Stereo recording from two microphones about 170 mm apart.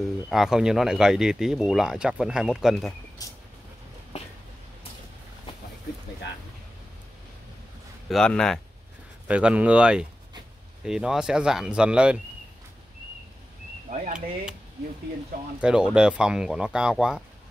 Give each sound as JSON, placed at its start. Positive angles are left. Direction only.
{"t": 0.0, "sound": "speech", "side_deg": 0}
{"t": 3.2, "sound": "vehicle", "side_deg": 20}
{"t": 8.1, "sound": "speech", "side_deg": 5}
{"t": 9.3, "sound": "speech", "side_deg": -5}
{"t": 13.8, "sound": "speech", "side_deg": -45}
{"t": 15.6, "sound": "speech", "side_deg": -5}